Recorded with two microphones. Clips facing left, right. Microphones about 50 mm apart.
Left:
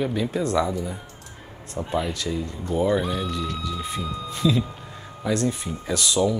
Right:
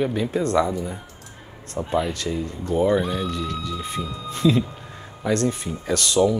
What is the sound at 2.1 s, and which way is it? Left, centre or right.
Speech, right.